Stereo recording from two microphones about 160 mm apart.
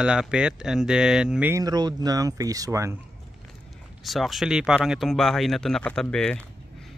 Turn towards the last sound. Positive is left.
turn(degrees=5)  # may be behind; listen again after turning